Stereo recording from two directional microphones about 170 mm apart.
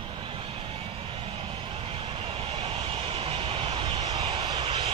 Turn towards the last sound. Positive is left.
turn(degrees=-30)  # may be behind; listen again after turning